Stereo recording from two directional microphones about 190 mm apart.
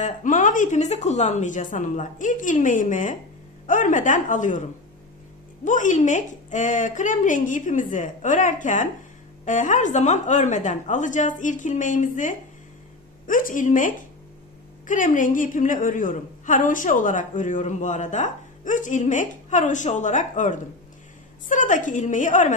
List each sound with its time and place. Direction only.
0.0 s a woman's voice: 45° left (ahead or behind)
5.7 s a woman's voice: 40° left (ahead or behind)